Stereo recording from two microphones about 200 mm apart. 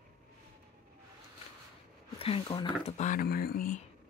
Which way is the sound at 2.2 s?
25° left (ahead or behind).